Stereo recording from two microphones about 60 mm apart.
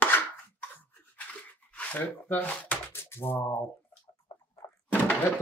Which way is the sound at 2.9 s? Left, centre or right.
Left.